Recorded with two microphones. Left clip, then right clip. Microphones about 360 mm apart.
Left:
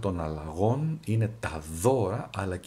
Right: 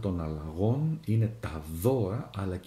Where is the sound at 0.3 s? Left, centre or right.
Left.